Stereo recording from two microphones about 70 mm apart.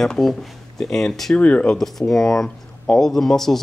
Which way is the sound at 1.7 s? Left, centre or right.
Centre.